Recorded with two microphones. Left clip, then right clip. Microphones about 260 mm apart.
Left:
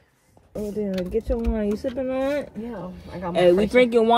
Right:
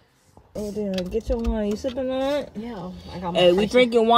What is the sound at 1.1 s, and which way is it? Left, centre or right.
Speech, right.